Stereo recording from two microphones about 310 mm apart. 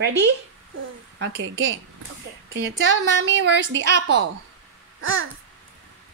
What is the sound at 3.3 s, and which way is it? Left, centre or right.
Speech, right.